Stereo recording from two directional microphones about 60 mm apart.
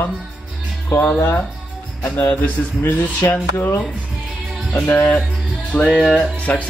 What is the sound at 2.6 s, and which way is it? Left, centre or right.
Speech, left.